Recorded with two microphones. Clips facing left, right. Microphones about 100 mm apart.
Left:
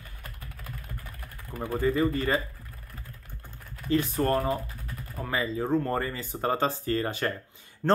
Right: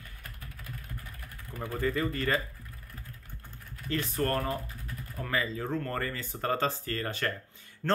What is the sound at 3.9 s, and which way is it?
Speech, 15° left (ahead or behind).